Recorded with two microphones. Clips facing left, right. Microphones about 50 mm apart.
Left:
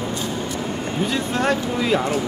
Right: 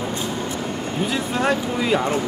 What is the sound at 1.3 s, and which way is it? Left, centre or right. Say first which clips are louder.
Speech: even; centre.